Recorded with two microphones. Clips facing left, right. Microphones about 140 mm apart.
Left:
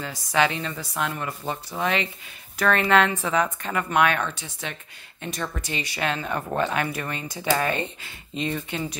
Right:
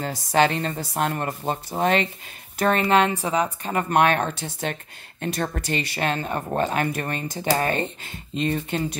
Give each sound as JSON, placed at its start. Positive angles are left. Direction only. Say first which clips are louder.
{"t": 0.0, "sound": "speech", "louder": "right 3 dB", "side_deg": -45}
{"t": 2.6, "sound": "speech", "louder": "right 1 dB", "side_deg": -30}
{"t": 4.4, "sound": "speech", "louder": "right 6 dB", "side_deg": -50}
{"t": 5.9, "sound": "speech", "louder": "left 1 dB", "side_deg": -40}